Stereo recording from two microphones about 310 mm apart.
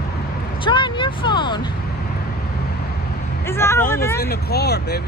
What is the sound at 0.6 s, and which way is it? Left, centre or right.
Speech, centre.